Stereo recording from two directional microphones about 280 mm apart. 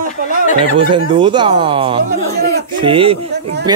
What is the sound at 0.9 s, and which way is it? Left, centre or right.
Speech, centre.